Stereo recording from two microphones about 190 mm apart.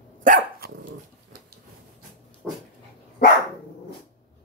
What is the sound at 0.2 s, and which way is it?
Dog, 45° right (ahead or behind).